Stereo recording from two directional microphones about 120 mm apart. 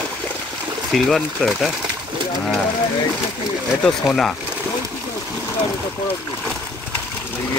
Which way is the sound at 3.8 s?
5° left (ahead or behind).